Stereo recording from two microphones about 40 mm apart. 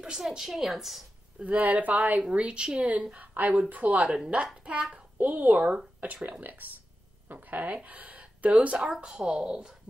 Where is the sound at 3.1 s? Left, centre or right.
Right.